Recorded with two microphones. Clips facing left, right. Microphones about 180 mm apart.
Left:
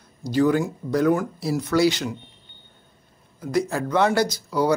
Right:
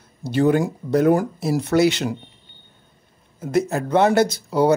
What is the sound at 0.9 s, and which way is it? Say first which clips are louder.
Speech: right 3 dB; 25° right (ahead or behind).